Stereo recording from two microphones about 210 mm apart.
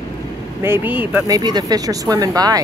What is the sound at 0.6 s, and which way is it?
Speech, 10° right (ahead or behind).